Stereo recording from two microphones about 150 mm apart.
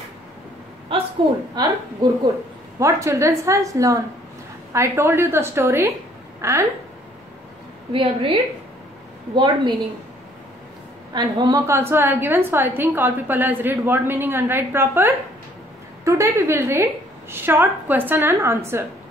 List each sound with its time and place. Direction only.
1.5 s a woman's voice: 25° right (ahead or behind)
7.9 s a woman's voice: 35° right (ahead or behind)
11.1 s a woman's voice: 30° right (ahead or behind)